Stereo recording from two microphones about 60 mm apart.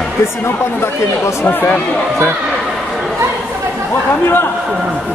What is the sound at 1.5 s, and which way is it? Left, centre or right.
Speech, left.